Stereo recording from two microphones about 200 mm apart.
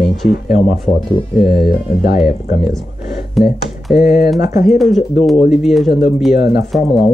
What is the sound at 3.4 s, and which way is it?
Speech, centre (ahead or behind).